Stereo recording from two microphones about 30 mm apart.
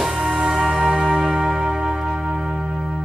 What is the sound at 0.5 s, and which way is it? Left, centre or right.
Music, right.